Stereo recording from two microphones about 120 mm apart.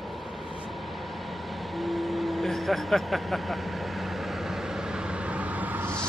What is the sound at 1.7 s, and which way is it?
Vehicle, centre (ahead or behind).